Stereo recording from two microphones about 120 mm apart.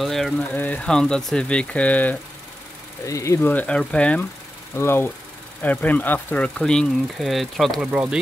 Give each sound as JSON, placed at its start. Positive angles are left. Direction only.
{"t": 0.0, "sound": "speech", "side_deg": 0}
{"t": 0.4, "sound": "speech", "side_deg": 15}
{"t": 3.1, "sound": "speech", "side_deg": 25}
{"t": 7.9, "sound": "speech", "side_deg": -10}